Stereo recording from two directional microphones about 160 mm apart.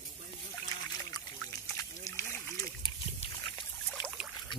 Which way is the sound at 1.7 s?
20° left (ahead or behind).